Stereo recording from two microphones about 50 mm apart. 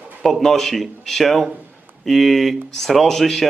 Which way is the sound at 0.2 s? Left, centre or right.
Centre.